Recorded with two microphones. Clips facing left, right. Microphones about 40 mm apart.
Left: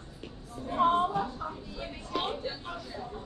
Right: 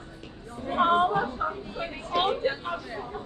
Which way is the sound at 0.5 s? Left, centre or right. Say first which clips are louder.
Right 3 dB; right.